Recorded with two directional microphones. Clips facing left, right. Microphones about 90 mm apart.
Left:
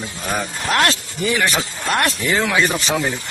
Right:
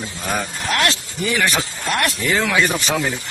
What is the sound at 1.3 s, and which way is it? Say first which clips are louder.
Speech: left 1 dB; 25° left (ahead or behind).